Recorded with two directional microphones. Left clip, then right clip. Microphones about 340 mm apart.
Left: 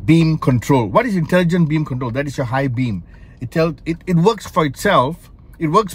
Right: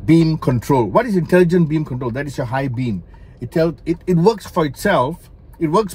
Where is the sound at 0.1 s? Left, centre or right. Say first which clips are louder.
Right 1 dB; left.